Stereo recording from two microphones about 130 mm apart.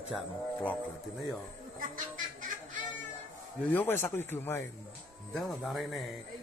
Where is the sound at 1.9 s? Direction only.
80° right.